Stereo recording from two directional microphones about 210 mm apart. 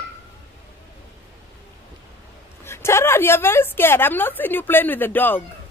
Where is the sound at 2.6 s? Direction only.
10° left (ahead or behind).